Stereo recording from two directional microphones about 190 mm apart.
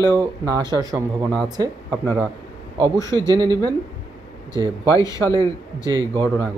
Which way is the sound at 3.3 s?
20° right (ahead or behind).